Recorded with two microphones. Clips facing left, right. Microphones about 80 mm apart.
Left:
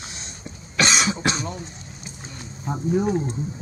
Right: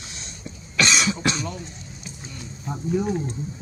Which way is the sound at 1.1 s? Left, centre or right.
Left.